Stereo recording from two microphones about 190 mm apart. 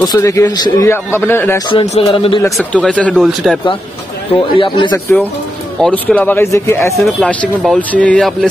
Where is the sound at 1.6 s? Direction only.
30° left (ahead or behind).